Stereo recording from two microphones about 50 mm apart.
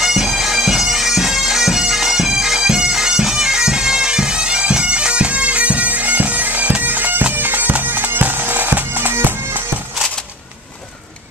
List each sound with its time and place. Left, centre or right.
0.0 s bagpipes: centre; by 9.6 s right